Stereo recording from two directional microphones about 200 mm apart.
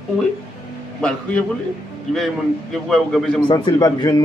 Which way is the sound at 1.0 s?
5° left (ahead or behind).